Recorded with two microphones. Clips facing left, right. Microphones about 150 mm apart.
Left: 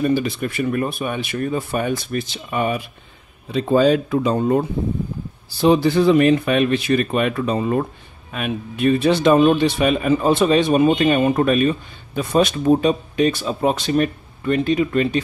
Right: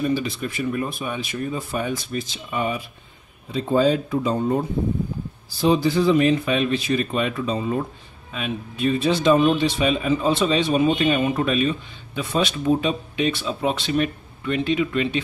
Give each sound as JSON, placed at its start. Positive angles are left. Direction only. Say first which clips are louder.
{"t": 0.0, "sound": "speech", "louder": "left 4 dB", "side_deg": 55}
{"t": 3.5, "sound": "speech", "louder": "left 4 dB", "side_deg": 75}
{"t": 5.6, "sound": "speech", "louder": "left 4 dB", "side_deg": 65}